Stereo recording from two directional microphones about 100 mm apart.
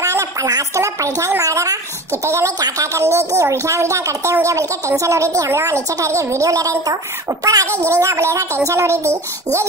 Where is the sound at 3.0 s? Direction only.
30° right (ahead or behind).